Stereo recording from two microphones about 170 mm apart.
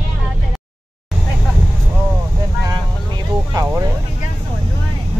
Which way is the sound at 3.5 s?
20° right (ahead or behind).